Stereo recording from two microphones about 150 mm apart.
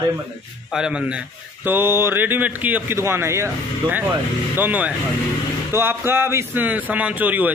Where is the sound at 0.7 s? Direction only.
5° right (ahead or behind).